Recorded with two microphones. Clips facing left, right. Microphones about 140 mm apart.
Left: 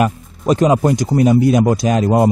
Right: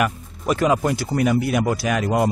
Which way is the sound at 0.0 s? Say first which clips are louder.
Left 5 dB; 25° left (ahead or behind).